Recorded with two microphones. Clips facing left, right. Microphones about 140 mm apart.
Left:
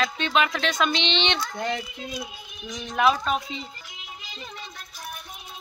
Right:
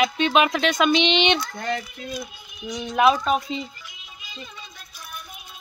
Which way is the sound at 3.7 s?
90° left.